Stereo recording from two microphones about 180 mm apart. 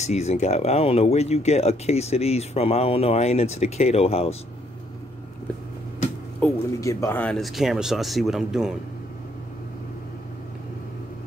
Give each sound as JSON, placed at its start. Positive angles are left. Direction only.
{"t": 0.0, "sound": "speech", "side_deg": 40}
{"t": 6.4, "sound": "speech", "side_deg": 15}